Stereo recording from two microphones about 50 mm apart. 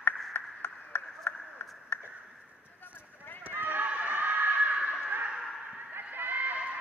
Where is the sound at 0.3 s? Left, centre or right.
Left.